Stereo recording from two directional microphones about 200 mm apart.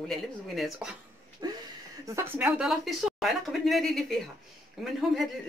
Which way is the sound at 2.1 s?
10° right (ahead or behind).